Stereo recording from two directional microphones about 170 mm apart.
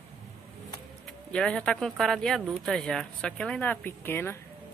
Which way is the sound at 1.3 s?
5° left (ahead or behind).